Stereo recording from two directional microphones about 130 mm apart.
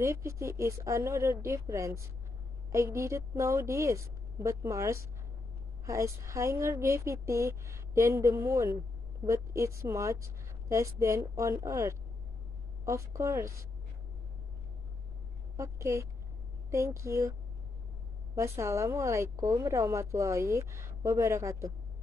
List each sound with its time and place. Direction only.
0.0 s a woman's voice: 20° right (ahead or behind)
15.5 s a woman's voice: 25° right (ahead or behind)